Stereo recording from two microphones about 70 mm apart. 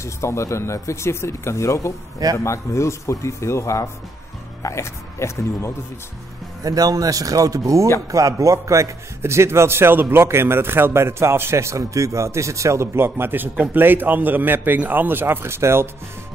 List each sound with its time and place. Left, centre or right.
0.0 s speech: left
6.6 s a man's voice: right